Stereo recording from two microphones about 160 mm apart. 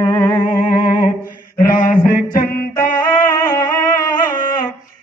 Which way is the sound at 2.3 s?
60° left (ahead or behind).